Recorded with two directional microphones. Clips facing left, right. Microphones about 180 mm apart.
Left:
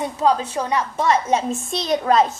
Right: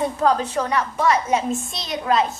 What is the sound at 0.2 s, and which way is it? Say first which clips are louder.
A woman's voice: left 2 dB; 20° left (ahead or behind).